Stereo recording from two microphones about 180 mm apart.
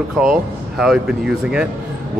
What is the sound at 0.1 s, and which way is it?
Speech, 5° right (ahead or behind).